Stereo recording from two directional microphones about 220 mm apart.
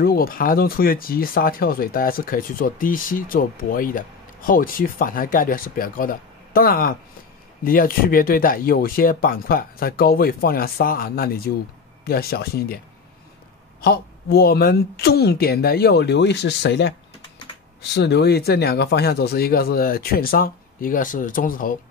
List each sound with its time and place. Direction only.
0.0 s speech: 40° left (ahead or behind)
13.7 s speech: 45° left (ahead or behind)
17.9 s speech: 50° left (ahead or behind)